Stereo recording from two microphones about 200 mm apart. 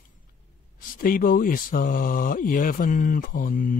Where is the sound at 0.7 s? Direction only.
45° left (ahead or behind).